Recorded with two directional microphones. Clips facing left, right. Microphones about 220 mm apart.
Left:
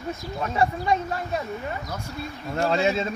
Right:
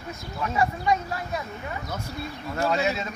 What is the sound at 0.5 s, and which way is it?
Speech, 30° left (ahead or behind).